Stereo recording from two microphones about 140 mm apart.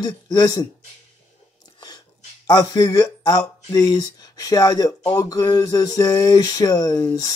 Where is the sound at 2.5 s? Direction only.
25° left (ahead or behind).